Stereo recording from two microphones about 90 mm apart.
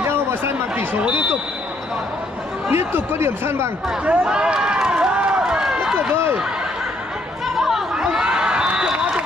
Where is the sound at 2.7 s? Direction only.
30° right (ahead or behind).